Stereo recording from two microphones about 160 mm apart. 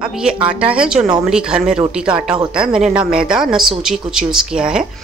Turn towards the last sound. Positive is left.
turn(degrees=-5)  # may be behind; listen again after turning